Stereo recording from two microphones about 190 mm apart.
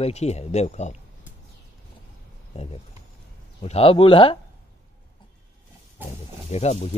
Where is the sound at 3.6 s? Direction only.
30° left (ahead or behind).